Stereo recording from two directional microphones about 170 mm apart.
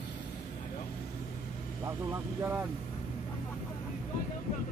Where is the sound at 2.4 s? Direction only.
15° right (ahead or behind).